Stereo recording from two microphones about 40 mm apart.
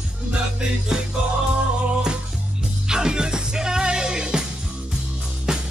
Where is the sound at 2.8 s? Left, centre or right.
Centre.